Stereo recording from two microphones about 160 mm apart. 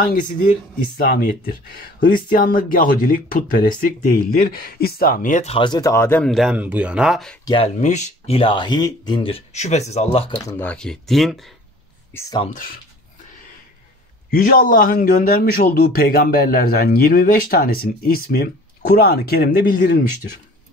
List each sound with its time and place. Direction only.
0.9 s speech: 65° left (ahead or behind)
5.5 s speech: 30° left (ahead or behind)
6.2 s speech: centre (ahead or behind)
7.4 s speech: 35° left (ahead or behind)
7.7 s speech: 50° left (ahead or behind)
8.4 s speech: 30° left (ahead or behind)
10.6 s speech: 5° left (ahead or behind)
12.1 s speech: 15° left (ahead or behind)
14.3 s speech: 60° left (ahead or behind)